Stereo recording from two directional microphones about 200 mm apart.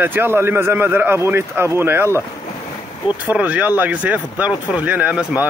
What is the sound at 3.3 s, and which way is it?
Speech, 10° right (ahead or behind).